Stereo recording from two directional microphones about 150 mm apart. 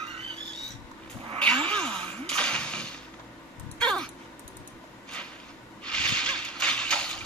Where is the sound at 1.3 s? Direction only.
5° left (ahead or behind).